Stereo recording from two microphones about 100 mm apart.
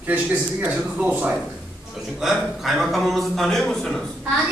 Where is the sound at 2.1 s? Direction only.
5° right (ahead or behind).